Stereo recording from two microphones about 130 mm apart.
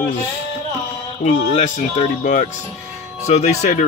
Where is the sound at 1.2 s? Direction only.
50° left (ahead or behind).